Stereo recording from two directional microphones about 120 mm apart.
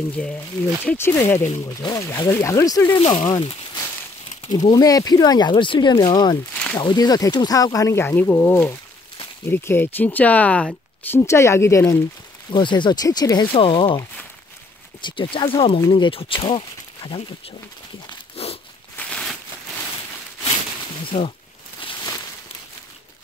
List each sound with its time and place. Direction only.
0.1 s speech: 10° left (ahead or behind); by 2.8 s 25° left (ahead or behind)
3.1 s speech: 40° left (ahead or behind)
4.7 s speech: 30° left (ahead or behind)
6.5 s a sound: 10° left (ahead or behind)
6.8 s speech: 35° left (ahead or behind); by 11.1 s 10° left (ahead or behind)
11.1 s speech: 25° left (ahead or behind)
12.4 s speech: 40° left (ahead or behind)
13.6 s speech: 45° left (ahead or behind)
15.0 s speech: 45° left (ahead or behind)
18.3 s a sound: 55° left (ahead or behind)
18.9 s a sound: 5° left (ahead or behind)
21.1 s speech: 65° left (ahead or behind)
21.8 s a sound: 45° left (ahead or behind)